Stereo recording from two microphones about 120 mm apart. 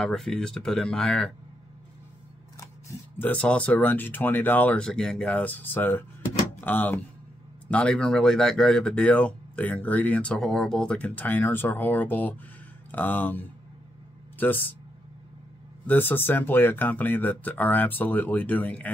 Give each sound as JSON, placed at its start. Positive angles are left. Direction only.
{"t": 0.0, "sound": "speech", "side_deg": 5}
{"t": 2.6, "sound": "scissors", "side_deg": 25}
{"t": 3.3, "sound": "speech", "side_deg": 10}
{"t": 15.9, "sound": "speech", "side_deg": 15}